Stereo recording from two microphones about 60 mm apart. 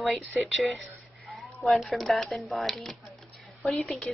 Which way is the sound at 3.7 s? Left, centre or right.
Left.